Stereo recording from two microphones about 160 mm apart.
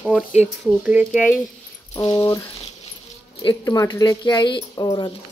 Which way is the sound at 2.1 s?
20° left (ahead or behind).